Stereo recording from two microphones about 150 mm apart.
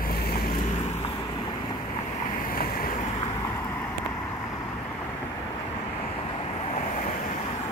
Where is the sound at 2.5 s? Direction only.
80° left.